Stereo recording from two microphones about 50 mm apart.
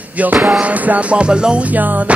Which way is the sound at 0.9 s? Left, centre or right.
Right.